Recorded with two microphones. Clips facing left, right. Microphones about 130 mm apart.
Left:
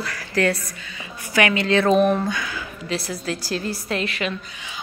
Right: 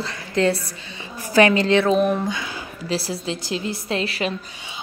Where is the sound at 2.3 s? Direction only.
20° right (ahead or behind).